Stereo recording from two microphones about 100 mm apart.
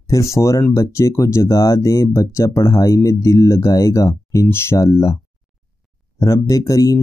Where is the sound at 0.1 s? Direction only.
30° left (ahead or behind).